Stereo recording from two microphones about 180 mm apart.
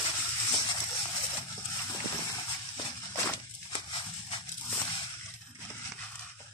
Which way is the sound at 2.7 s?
20° left (ahead or behind).